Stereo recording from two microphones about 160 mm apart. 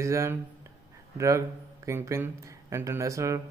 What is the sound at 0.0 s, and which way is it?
A man's voice, 20° right (ahead or behind).